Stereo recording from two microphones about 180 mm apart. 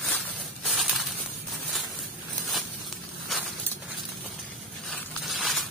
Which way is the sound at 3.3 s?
Centre (ahead or behind).